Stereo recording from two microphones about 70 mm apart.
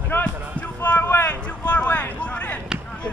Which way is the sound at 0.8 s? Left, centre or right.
Left.